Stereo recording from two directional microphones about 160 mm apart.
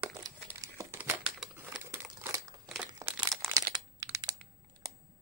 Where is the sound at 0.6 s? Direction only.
20° right (ahead or behind).